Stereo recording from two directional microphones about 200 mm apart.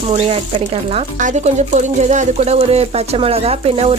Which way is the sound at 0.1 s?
30° right (ahead or behind).